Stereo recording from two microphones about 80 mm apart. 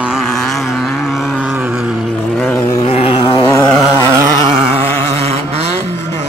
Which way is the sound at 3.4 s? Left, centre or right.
Left.